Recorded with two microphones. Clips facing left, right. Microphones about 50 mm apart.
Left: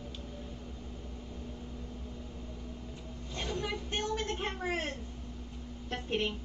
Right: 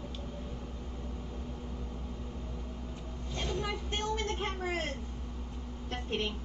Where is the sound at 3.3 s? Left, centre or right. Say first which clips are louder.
Right 1 dB; left.